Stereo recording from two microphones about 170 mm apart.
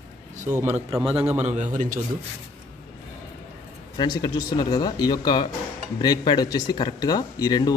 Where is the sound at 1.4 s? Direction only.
45° right (ahead or behind).